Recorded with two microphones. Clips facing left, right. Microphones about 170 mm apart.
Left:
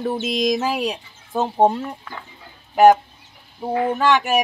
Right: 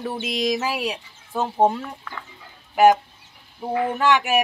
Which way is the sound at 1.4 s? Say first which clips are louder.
Left 2 dB; 15° left (ahead or behind).